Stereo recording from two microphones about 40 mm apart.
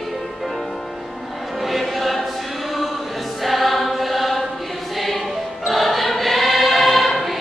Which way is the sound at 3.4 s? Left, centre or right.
Centre.